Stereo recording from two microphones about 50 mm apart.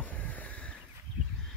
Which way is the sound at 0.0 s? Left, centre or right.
Left.